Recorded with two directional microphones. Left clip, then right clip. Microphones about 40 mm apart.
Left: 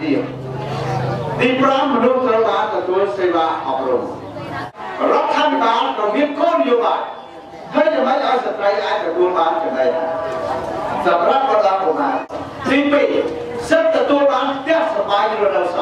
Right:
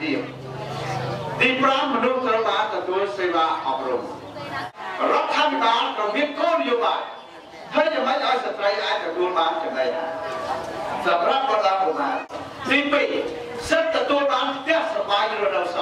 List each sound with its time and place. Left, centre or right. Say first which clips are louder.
0.8 s a sound: left 6 dB; right
2.0 s a man's voice: left 6 dB; right
5.0 s speech: left 5 dB; right
5.9 s speech: left 6 dB; right
7.7 s a sound: left 5 dB; right
8.1 s a man's voice: left 5 dB; right
15.3 s a man's voice: left 6 dB; right